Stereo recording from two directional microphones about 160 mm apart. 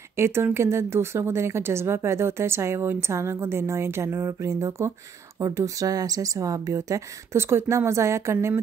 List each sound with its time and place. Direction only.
0.1 s a woman's voice: 15° right (ahead or behind)